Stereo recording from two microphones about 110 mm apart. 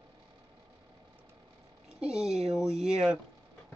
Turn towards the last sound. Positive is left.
turn(degrees=-5)  # may be behind; listen again after turning